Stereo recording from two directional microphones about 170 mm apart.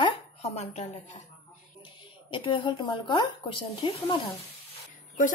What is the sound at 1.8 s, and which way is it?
A woman's voice, 30° left (ahead or behind).